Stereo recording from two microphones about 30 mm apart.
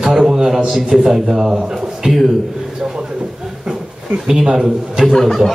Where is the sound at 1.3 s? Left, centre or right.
Right.